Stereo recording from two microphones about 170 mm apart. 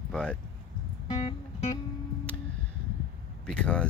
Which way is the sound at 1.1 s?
35° left (ahead or behind).